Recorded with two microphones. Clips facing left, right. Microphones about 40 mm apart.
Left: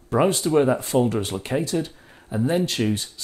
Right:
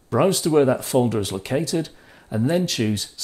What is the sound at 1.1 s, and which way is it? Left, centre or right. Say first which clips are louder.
Speech: right 1 dB; centre.